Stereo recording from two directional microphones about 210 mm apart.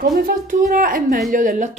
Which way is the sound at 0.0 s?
40° right (ahead or behind).